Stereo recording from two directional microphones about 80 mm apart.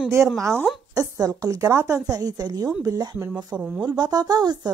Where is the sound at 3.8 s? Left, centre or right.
Right.